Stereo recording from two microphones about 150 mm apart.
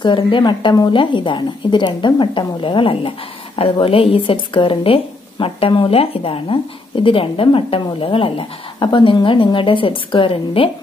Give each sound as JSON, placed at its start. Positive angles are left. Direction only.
{"t": 0.0, "sound": "speech", "side_deg": 30}